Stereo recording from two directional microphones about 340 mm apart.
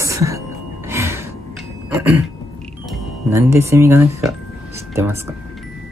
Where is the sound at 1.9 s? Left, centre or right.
Centre.